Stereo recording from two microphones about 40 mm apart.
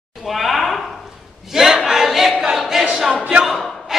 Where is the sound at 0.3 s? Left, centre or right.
Centre.